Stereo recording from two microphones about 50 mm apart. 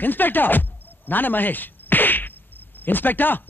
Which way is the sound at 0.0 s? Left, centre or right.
Left.